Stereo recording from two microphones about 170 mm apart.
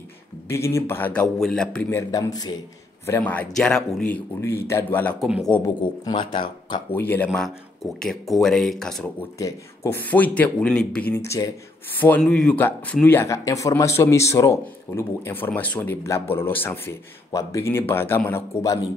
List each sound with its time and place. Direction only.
0.5 s speech: 15° left (ahead or behind)
3.1 s speech: 10° left (ahead or behind)
5.2 s speech: centre (ahead or behind)
5.8 s speech: 30° left (ahead or behind)
6.9 s speech: 10° left (ahead or behind)
7.2 s speech: centre (ahead or behind)
9.4 s speech: 15° left (ahead or behind)